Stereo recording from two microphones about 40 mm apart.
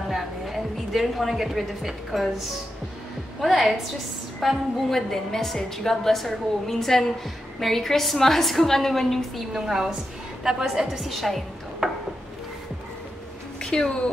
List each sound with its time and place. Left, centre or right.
0.1 s a woman's voice: centre
9.7 s a woman's voice: centre
11.8 s a sound: right
13.6 s a woman's voice: left